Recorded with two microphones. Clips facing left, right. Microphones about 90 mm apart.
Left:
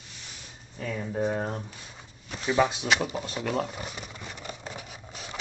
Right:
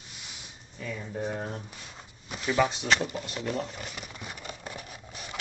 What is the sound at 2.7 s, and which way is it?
Speech, 15° left (ahead or behind).